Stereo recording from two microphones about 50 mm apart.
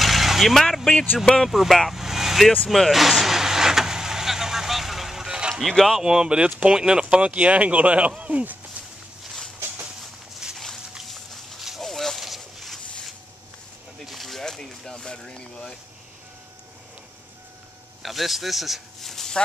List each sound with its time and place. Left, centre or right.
0.0 s vehicle: centre
1.4 s speech: centre
2.7 s vehicle: centre
5.5 s speech: centre
5.9 s speech: centre; by 8.5 s right
10.4 s dog: centre
11.1 s a sound: centre
18.0 s speech: centre